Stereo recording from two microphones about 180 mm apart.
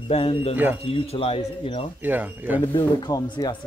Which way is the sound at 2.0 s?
10° right (ahead or behind).